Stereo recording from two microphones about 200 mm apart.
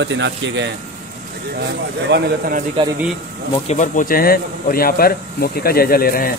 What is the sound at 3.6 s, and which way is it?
A man's voice, 40° left (ahead or behind).